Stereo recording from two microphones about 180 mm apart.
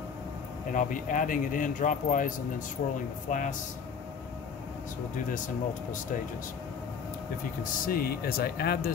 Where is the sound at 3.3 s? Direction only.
45° left (ahead or behind).